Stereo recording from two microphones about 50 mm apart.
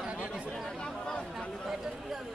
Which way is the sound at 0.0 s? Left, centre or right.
Centre.